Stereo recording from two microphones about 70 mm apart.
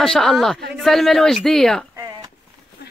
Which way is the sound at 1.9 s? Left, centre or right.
Right.